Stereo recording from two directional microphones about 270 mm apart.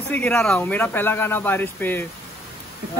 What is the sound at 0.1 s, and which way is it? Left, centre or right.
Speech, centre.